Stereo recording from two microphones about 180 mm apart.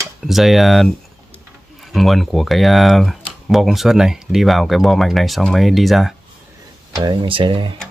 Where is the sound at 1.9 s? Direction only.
Centre (ahead or behind).